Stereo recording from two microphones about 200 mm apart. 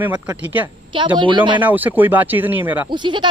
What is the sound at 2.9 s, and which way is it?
Speech, 25° right (ahead or behind).